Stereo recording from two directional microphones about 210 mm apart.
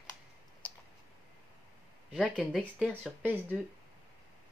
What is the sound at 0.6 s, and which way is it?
Clicking, 5° left (ahead or behind).